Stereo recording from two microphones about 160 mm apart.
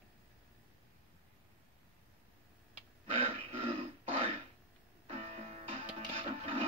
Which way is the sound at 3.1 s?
35° right (ahead or behind).